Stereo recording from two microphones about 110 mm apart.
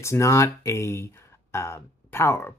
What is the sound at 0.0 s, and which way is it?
Speech, 25° left (ahead or behind).